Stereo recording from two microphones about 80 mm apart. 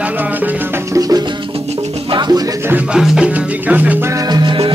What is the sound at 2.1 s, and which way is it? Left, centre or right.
Music, right.